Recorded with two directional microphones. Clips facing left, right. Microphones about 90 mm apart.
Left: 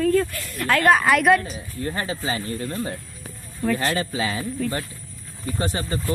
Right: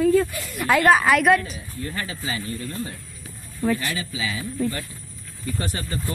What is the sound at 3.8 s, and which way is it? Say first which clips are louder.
Speech: left 5 dB; 50° left (ahead or behind).